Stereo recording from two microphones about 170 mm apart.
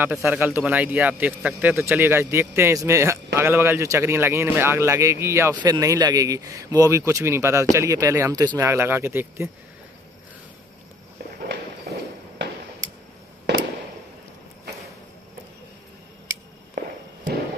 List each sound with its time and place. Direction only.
0.0 s speech: 5° right (ahead or behind)
16.7 s walk: 60° right (ahead or behind)